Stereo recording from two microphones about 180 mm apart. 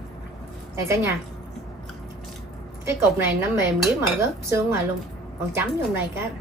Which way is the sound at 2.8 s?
15° right (ahead or behind).